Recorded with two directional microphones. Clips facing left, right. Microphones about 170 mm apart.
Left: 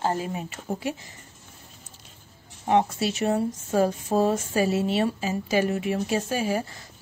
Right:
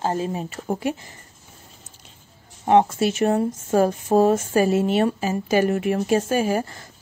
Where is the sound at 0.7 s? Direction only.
55° right (ahead or behind).